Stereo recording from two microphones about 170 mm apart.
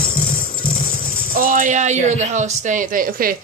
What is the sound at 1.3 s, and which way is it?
Speech, 50° right (ahead or behind).